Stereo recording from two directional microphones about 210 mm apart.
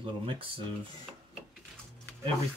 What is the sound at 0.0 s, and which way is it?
Speech, 25° right (ahead or behind).